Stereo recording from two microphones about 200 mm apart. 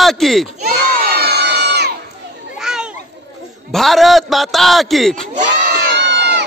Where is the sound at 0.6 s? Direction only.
50° right (ahead or behind).